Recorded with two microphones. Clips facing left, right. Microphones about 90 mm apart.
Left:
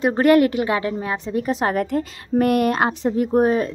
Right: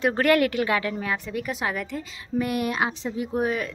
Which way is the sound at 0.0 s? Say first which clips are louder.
Left 5 dB; 25° left (ahead or behind).